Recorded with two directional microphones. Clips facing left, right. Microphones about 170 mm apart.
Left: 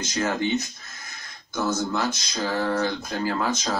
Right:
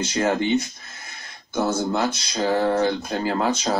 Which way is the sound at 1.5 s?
30° right (ahead or behind).